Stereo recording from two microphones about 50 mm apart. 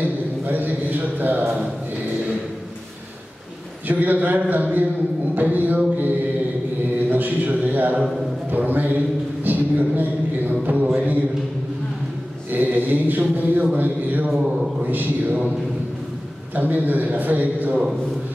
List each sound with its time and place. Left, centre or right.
0.0 s a sound: right
3.8 s mantra: right
7.1 s a sound: right
10.6 s mantra: right
12.4 s mantra: right
16.5 s mantra: right